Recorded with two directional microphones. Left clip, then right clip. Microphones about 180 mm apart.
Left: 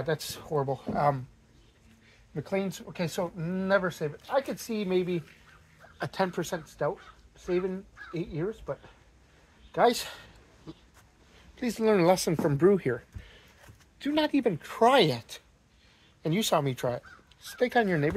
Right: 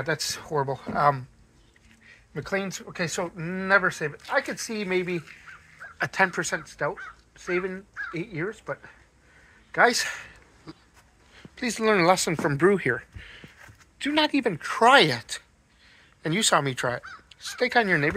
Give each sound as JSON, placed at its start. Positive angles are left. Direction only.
{"t": 0.0, "sound": "speech", "side_deg": -10}
{"t": 2.3, "sound": "speech", "side_deg": -5}
{"t": 4.0, "sound": "speech", "side_deg": -20}
{"t": 4.8, "sound": "speech", "side_deg": -5}
{"t": 9.8, "sound": "speech", "side_deg": 0}
{"t": 11.5, "sound": "speech", "side_deg": 10}
{"t": 12.5, "sound": "speech", "side_deg": 5}